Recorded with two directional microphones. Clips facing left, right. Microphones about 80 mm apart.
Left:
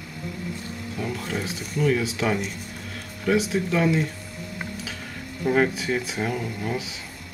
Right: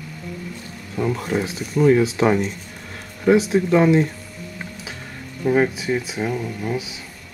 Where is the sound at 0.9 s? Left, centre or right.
Right.